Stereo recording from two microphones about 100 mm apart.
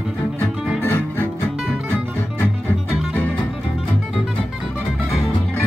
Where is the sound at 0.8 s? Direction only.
25° left (ahead or behind).